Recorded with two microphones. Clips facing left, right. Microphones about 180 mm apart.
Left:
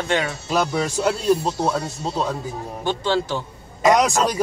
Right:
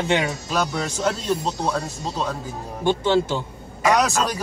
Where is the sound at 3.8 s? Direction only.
15° left (ahead or behind).